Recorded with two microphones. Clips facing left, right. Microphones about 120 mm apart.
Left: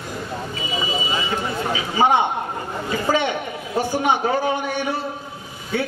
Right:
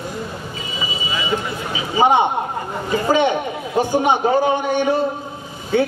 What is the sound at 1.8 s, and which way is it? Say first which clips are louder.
A man's voice: right 3 dB; 20° right (ahead or behind).